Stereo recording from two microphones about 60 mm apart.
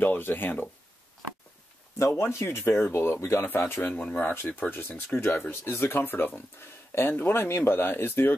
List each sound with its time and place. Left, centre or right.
0.0 s speech: left
2.0 s speech: left
3.9 s speech: left